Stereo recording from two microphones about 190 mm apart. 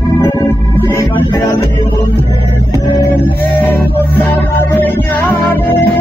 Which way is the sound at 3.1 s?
10° left (ahead or behind).